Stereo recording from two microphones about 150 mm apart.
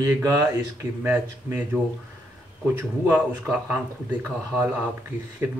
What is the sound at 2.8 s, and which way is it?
A man's voice, 10° right (ahead or behind).